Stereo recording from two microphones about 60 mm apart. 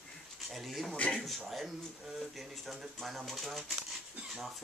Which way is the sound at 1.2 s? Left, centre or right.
Centre.